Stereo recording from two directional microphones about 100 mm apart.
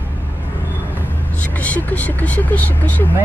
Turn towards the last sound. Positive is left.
turn(degrees=20)  # may be behind; listen again after turning